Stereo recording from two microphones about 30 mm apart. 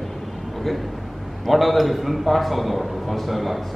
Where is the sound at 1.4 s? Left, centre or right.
Centre.